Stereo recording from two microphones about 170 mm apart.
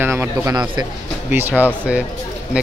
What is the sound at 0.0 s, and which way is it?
Speech, 15° right (ahead or behind).